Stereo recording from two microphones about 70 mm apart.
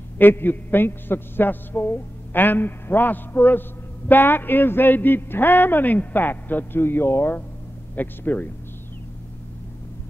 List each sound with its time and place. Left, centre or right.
0.2 s a man's voice: left